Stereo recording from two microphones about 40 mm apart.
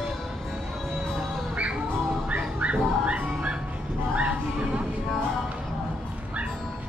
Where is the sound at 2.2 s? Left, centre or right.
Right.